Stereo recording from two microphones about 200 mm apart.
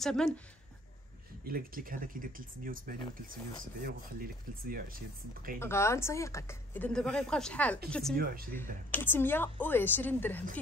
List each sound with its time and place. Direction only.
0.0 s speech: 5° left (ahead or behind)
1.4 s speech: 45° right (ahead or behind)
5.6 s speech: 15° left (ahead or behind)